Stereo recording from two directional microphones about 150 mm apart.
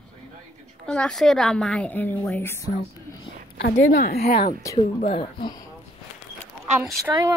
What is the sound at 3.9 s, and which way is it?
Speech, 85° left.